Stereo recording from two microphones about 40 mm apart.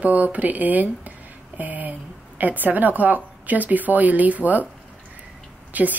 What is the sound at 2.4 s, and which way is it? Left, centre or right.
Speech, right.